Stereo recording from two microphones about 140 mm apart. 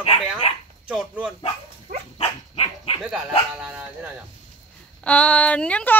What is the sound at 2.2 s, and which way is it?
Dog, 45° left (ahead or behind).